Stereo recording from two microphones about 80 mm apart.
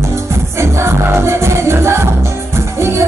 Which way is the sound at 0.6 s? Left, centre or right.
Right.